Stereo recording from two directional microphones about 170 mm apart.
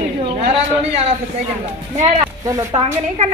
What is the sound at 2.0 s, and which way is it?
Speech, 20° right (ahead or behind).